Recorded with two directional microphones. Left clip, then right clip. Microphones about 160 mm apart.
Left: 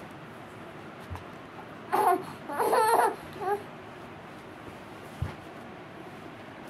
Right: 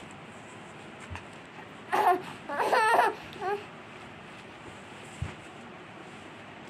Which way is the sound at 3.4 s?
20° right (ahead or behind).